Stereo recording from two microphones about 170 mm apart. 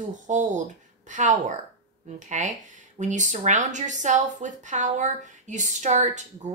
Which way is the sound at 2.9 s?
45° right (ahead or behind).